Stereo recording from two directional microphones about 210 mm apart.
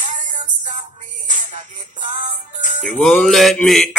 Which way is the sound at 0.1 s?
35° right (ahead or behind).